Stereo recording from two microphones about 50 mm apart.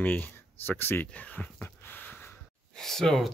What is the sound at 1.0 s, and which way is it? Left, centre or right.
Speech, left.